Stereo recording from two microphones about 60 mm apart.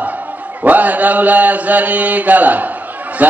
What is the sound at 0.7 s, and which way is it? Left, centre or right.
Mantra, right.